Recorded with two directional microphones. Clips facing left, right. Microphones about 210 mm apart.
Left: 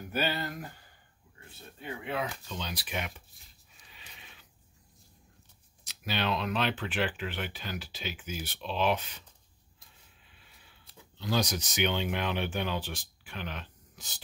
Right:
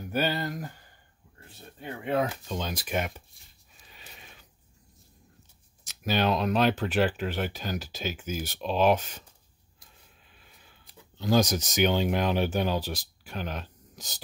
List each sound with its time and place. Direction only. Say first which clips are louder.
0.1 s speech: right 4 dB; 40° right (ahead or behind)
2.0 s speech: right 8 dB; 40° right (ahead or behind)
3.4 s a sound: even; centre (ahead or behind)
3.9 s a sound: right 4 dB; 45° right (ahead or behind)
5.9 s speech: right 6 dB; 45° right (ahead or behind)
11.1 s speech: right 7 dB; 45° right (ahead or behind)